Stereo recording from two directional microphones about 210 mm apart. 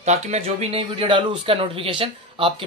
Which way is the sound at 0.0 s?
30° right (ahead or behind).